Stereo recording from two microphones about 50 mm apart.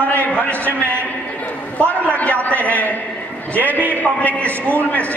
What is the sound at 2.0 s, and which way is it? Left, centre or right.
A man's voice, left.